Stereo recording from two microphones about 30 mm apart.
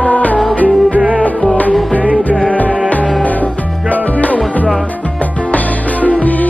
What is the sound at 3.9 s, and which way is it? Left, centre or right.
Music, left.